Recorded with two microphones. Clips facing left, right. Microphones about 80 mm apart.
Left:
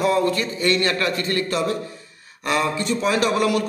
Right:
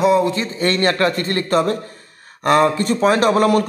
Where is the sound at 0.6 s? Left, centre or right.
Right.